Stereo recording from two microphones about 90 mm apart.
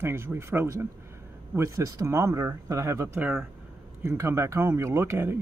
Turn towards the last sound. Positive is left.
turn(degrees=-30)  # may be behind; listen again after turning